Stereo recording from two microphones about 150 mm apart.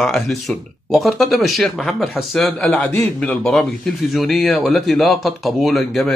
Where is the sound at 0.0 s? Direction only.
Centre (ahead or behind).